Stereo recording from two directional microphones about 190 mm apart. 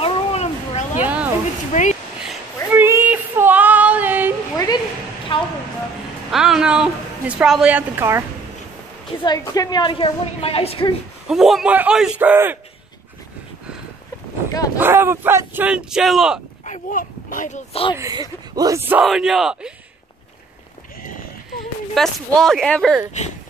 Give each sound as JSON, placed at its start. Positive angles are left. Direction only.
{"t": 0.0, "sound": "a sound", "side_deg": 35}
{"t": 1.0, "sound": "a sound", "side_deg": -5}
{"t": 1.7, "sound": "speech", "side_deg": 40}
{"t": 2.2, "sound": "child singing", "side_deg": -10}
{"t": 5.3, "sound": "a sound", "side_deg": 25}
{"t": 6.3, "sound": "a woman's voice", "side_deg": -5}
{"t": 9.2, "sound": "a woman's voice", "side_deg": 20}
{"t": 11.2, "sound": "speech", "side_deg": 0}
{"t": 14.8, "sound": "speech", "side_deg": -10}
{"t": 16.6, "sound": "speech", "side_deg": 40}
{"t": 17.9, "sound": "speech", "side_deg": -15}
{"t": 21.9, "sound": "speech", "side_deg": 0}